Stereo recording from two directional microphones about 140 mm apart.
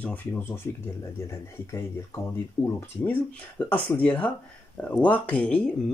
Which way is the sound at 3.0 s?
10° left (ahead or behind).